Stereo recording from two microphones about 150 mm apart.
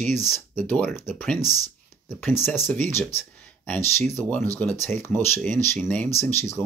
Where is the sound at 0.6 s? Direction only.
10° left (ahead or behind).